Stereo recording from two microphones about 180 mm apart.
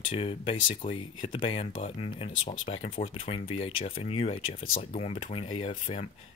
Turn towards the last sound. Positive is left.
turn(degrees=40)  # may be behind; listen again after turning